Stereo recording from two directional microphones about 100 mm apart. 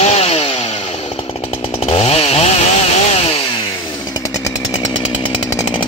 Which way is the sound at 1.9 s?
85° left.